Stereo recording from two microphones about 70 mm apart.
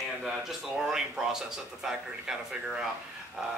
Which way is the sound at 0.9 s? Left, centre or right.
Centre.